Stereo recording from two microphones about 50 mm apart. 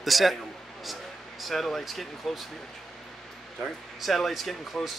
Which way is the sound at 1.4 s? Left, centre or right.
Centre.